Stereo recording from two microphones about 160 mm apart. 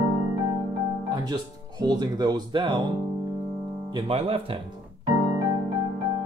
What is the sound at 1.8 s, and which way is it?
Speech, 25° right (ahead or behind).